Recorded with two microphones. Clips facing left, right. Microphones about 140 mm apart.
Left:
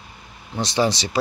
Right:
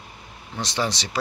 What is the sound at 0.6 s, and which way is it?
Speech, 10° left (ahead or behind).